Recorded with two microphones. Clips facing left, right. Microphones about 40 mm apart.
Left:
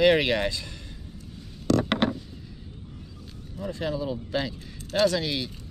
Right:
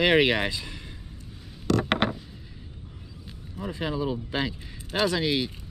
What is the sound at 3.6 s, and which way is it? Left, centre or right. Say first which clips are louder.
Speech: even; centre.